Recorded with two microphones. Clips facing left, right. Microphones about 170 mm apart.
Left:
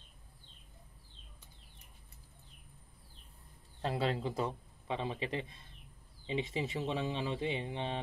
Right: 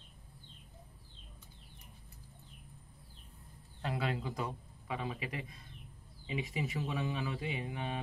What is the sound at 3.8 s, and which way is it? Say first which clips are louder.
Speech: left 3 dB; 30° left (ahead or behind).